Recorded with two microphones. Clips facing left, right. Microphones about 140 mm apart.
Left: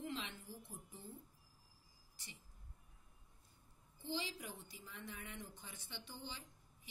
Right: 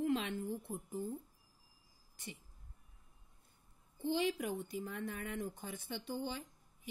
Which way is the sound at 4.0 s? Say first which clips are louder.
Right 10 dB; 55° right (ahead or behind).